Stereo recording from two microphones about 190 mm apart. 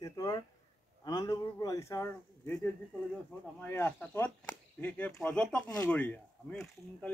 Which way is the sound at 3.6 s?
10° left (ahead or behind).